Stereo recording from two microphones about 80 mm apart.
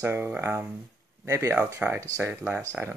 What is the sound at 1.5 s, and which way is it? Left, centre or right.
Speech, right.